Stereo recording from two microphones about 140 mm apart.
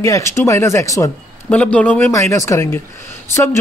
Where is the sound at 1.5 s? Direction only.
10° left (ahead or behind).